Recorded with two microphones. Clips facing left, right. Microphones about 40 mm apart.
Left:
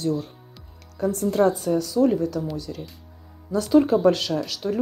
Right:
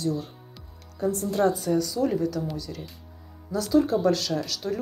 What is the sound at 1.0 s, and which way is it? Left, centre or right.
Speech, left.